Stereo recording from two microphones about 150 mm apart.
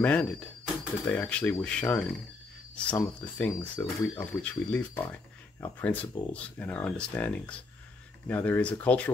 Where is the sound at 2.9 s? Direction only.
10° left (ahead or behind).